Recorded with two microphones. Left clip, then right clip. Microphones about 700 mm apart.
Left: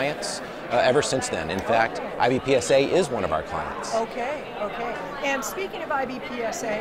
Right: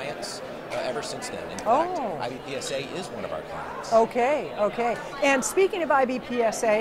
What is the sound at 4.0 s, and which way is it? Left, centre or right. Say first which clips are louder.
A woman's voice: right 10 dB; right.